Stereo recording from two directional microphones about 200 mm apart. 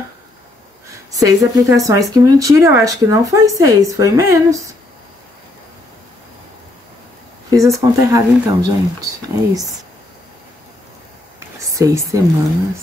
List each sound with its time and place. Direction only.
1.1 s speech: 15° right (ahead or behind)
7.5 s speech: 15° right (ahead or behind)
11.3 s a sound: 15° right (ahead or behind)